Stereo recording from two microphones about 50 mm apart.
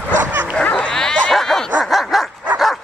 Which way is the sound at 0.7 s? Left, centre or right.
Centre.